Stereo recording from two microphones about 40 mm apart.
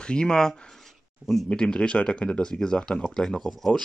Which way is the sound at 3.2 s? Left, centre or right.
Left.